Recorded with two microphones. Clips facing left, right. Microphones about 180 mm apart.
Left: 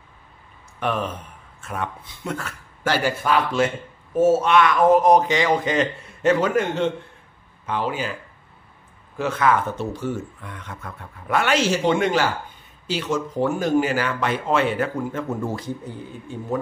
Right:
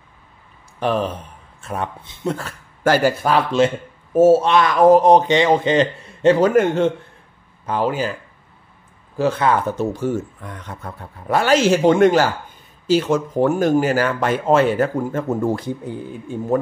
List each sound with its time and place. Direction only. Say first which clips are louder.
0.7 s speech: right 5 dB; 35° right (ahead or behind)
2.8 s speech: right 6 dB; 45° right (ahead or behind)
7.6 s speech: right 5 dB; 40° right (ahead or behind)
9.1 s speech: right 3 dB; 35° right (ahead or behind)
11.6 s speech: right 7 dB; 45° right (ahead or behind)